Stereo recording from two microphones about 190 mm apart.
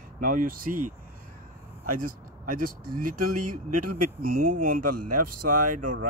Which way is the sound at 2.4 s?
45° right (ahead or behind).